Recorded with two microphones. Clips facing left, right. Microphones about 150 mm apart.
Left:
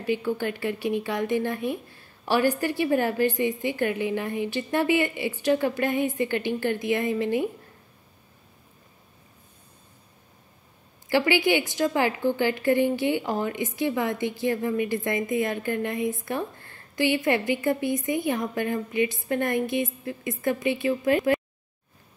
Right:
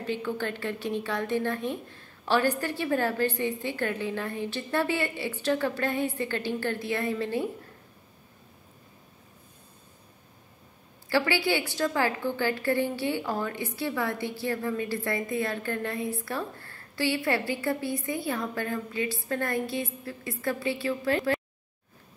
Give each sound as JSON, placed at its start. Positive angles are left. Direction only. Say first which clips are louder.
{"t": 0.0, "sound": "a woman's voice", "louder": "left 4 dB", "side_deg": 10}
{"t": 11.1, "sound": "a woman's voice", "louder": "left 4 dB", "side_deg": 15}